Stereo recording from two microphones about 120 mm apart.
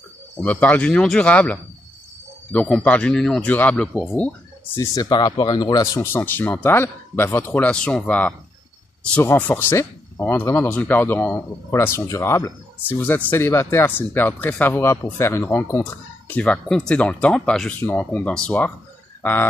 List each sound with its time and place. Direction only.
0.4 s speech: 10° left (ahead or behind)
4.7 s speech: 25° left (ahead or behind)
5.9 s speech: 20° left (ahead or behind)